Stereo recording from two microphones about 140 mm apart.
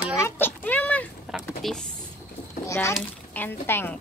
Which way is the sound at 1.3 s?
5° right (ahead or behind).